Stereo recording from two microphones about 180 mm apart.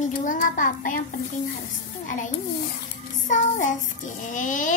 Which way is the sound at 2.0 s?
45° left (ahead or behind).